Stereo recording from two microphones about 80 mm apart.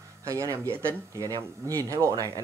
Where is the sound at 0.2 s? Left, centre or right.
Right.